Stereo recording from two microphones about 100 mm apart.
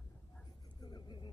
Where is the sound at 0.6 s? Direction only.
45° left (ahead or behind).